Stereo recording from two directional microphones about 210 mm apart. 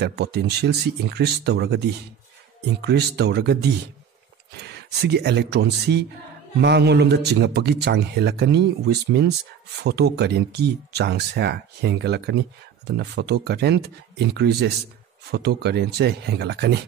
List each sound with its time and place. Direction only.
0.0 s speech: 50° right (ahead or behind)
2.8 s speech: 50° right (ahead or behind)
4.6 s speech: 50° right (ahead or behind)